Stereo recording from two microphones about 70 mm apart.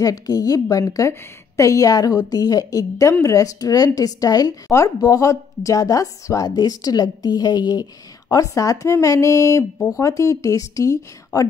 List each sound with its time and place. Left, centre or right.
0.0 s a woman's voice: left